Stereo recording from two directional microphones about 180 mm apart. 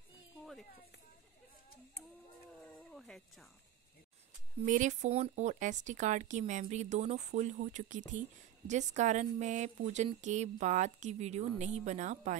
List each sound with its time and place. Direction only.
2.9 s speech: centre (ahead or behind)
4.6 s speech: 45° right (ahead or behind)